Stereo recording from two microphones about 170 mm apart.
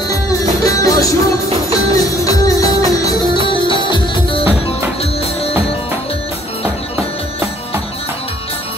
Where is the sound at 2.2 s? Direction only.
20° left (ahead or behind).